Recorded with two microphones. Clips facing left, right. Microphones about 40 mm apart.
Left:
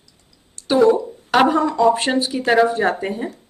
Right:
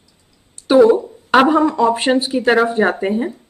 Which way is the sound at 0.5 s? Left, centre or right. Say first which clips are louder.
Right 4 dB; centre.